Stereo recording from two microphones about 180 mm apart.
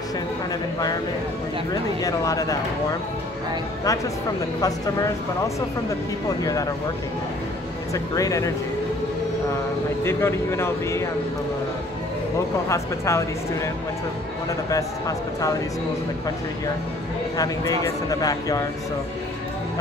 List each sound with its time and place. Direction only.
1.7 s speech: 20° left (ahead or behind)
4.6 s speech: 20° left (ahead or behind)
6.4 s speech: 20° left (ahead or behind)
7.9 s speech: 20° left (ahead or behind)
10.0 s speech: 15° left (ahead or behind)
12.6 s speech: 15° left (ahead or behind)
14.7 s speech: 20° left (ahead or behind)
17.4 s speech: 20° left (ahead or behind)